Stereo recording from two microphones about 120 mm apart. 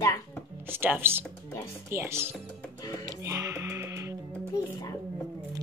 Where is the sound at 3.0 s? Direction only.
30° right (ahead or behind).